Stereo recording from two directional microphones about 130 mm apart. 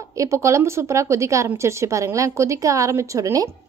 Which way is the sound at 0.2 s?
25° right (ahead or behind).